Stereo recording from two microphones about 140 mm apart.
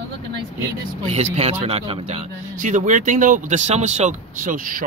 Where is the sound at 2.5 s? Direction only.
65° right (ahead or behind).